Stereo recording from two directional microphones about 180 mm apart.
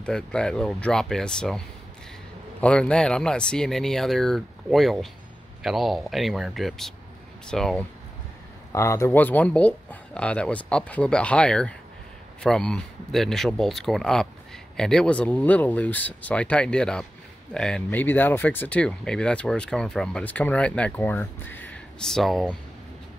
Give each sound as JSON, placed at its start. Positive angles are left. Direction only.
{"t": 0.0, "sound": "speech", "side_deg": 5}
{"t": 2.6, "sound": "speech", "side_deg": 5}
{"t": 8.7, "sound": "speech", "side_deg": 15}